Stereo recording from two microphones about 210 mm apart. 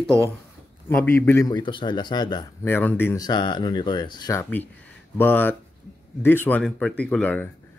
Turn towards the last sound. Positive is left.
turn(degrees=5)  # may be behind; listen again after turning